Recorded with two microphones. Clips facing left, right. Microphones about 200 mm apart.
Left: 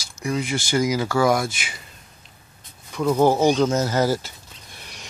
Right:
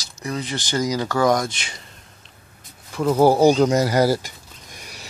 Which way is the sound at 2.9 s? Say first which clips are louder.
Right 2 dB; 5° right (ahead or behind).